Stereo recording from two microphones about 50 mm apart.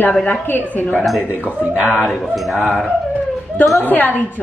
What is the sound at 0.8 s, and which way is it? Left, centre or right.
Speech, left.